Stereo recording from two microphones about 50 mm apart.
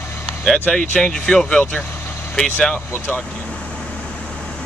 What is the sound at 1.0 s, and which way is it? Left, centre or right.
Speech, centre.